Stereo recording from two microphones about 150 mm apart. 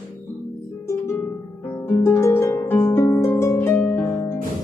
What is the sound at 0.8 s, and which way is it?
Harp, 15° left (ahead or behind).